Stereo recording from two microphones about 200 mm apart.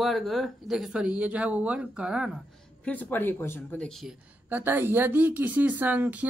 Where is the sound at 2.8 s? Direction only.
10° left (ahead or behind); by 6.3 s 10° right (ahead or behind).